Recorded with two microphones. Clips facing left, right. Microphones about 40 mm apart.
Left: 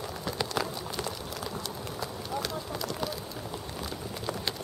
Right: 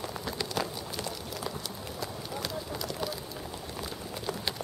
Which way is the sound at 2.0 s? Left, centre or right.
Centre.